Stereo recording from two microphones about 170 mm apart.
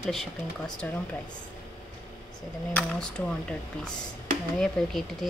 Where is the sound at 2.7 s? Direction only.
5° left (ahead or behind).